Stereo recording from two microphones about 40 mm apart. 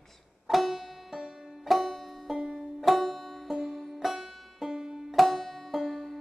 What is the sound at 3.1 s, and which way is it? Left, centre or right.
Banjo, centre.